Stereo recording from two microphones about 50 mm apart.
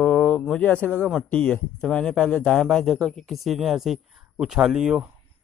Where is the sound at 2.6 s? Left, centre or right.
Centre.